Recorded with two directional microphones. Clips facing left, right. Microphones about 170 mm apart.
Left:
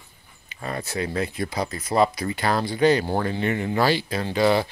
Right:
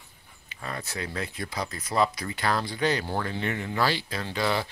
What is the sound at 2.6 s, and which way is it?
Speech, 10° left (ahead or behind).